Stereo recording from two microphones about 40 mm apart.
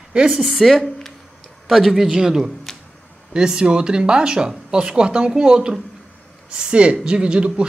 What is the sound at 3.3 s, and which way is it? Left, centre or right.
Speech, right.